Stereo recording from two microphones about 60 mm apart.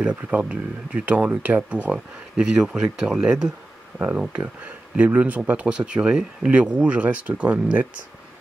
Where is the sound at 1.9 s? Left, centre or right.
Centre.